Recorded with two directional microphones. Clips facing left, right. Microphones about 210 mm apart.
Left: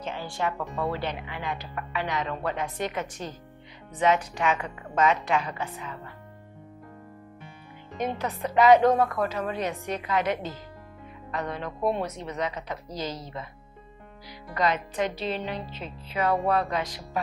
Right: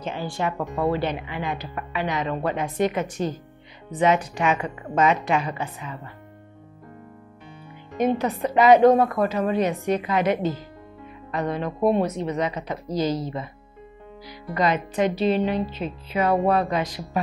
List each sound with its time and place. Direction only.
0.0 s speech: 15° right (ahead or behind)
8.0 s speech: 10° right (ahead or behind)
14.5 s speech: 15° right (ahead or behind)